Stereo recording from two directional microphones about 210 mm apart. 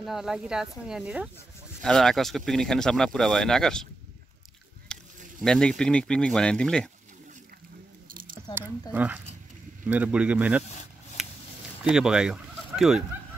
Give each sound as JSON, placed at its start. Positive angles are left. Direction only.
{"t": 0.0, "sound": "speech", "side_deg": 0}
{"t": 4.9, "sound": "a sound", "side_deg": 5}
{"t": 5.4, "sound": "speech", "side_deg": 5}
{"t": 8.1, "sound": "squish", "side_deg": -40}
{"t": 8.9, "sound": "speech", "side_deg": -5}
{"t": 11.2, "sound": "a sound", "side_deg": 0}
{"t": 11.9, "sound": "speech", "side_deg": -5}